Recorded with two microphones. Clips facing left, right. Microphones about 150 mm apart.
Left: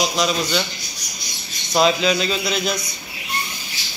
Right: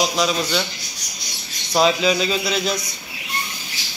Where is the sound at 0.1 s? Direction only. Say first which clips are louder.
Even; centre (ahead or behind).